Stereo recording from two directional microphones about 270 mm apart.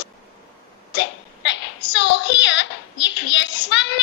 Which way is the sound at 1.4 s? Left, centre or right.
Left.